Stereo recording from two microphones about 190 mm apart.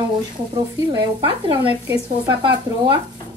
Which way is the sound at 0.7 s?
20° right (ahead or behind).